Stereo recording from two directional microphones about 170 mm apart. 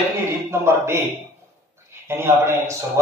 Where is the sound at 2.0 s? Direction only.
15° right (ahead or behind).